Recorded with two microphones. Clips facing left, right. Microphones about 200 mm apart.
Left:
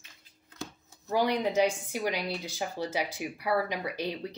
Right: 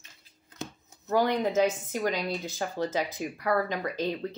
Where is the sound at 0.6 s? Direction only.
20° right (ahead or behind).